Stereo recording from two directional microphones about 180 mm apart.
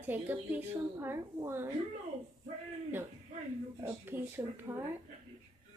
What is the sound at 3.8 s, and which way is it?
Speech, 10° right (ahead or behind).